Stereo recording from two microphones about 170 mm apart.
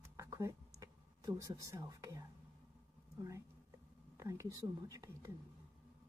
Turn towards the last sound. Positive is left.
turn(degrees=-20)  # may be behind; listen again after turning